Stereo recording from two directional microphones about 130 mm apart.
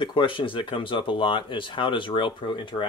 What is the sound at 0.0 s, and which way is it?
Speech, 40° left (ahead or behind).